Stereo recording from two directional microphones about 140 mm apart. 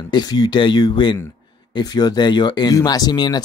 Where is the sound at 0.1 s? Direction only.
30° left (ahead or behind).